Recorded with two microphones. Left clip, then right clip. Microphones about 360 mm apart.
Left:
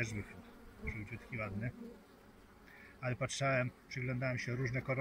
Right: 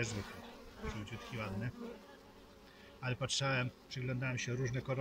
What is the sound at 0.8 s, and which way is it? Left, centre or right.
Bee, right.